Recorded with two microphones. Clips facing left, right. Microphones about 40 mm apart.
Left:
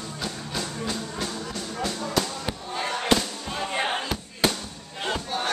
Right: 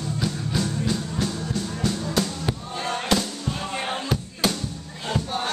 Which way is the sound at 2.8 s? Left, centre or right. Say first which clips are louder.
Left 1 dB; centre.